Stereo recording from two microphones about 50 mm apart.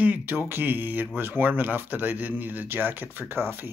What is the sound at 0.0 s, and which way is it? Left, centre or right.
Speech, right.